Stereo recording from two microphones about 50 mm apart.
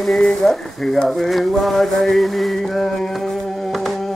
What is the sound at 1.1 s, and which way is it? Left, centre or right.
Chant, centre.